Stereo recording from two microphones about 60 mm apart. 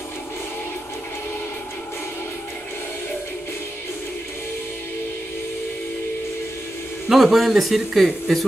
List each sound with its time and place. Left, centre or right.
7.1 s speech: centre